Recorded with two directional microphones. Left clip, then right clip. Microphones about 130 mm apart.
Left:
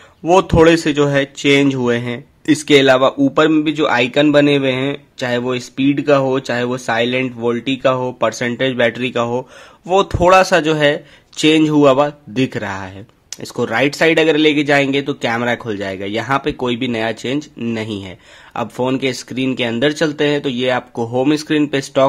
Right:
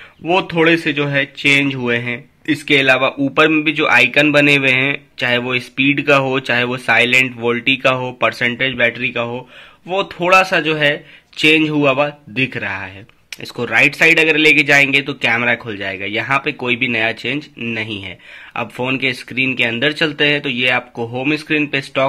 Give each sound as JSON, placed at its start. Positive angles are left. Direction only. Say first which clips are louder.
{"t": 0.3, "sound": "a man's voice", "louder": "left 3 dB", "side_deg": 55}
{"t": 3.0, "sound": "a man's voice", "louder": "left 3 dB", "side_deg": 45}
{"t": 3.3, "sound": "a man's voice", "louder": "even", "side_deg": 30}
{"t": 8.6, "sound": "a man's voice", "louder": "left 3 dB", "side_deg": 55}
{"t": 21.0, "sound": "a man's voice", "louder": "left 3 dB", "side_deg": 55}